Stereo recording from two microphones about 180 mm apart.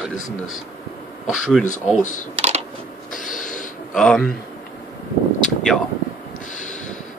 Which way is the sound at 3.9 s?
5° left (ahead or behind).